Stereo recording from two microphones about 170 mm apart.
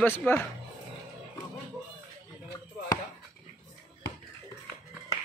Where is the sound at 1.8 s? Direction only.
15° right (ahead or behind).